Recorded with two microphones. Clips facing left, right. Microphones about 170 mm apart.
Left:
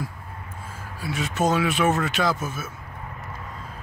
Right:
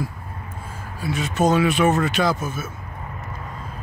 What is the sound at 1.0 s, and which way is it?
Speech, 5° left (ahead or behind).